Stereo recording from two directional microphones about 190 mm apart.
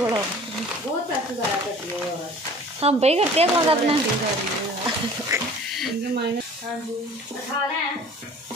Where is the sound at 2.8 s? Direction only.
35° right (ahead or behind).